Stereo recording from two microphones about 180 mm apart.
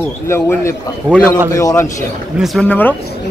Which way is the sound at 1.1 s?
5° left (ahead or behind).